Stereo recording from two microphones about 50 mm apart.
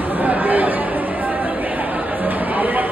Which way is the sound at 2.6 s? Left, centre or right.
Right.